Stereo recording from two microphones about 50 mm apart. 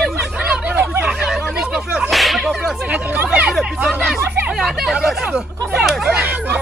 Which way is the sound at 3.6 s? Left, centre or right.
Right.